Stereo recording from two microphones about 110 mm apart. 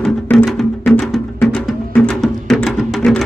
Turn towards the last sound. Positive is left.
turn(degrees=0)  # may be behind; listen again after turning